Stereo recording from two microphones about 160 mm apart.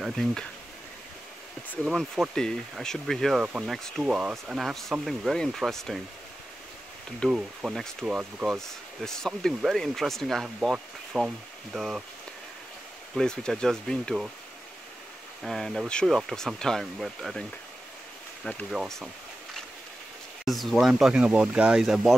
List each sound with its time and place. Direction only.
0.0 s speech: centre (ahead or behind)
1.9 s speech: centre (ahead or behind)
7.2 s speech: centre (ahead or behind)
13.1 s speech: 5° left (ahead or behind)
15.4 s speech: centre (ahead or behind)
20.4 s speech: centre (ahead or behind)